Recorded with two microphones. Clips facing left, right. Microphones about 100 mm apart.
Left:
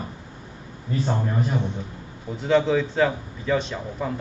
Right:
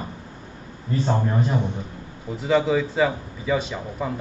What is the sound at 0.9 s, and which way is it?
Speech, 30° right (ahead or behind).